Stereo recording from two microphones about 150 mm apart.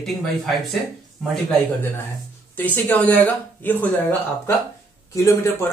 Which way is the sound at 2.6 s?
10° left (ahead or behind).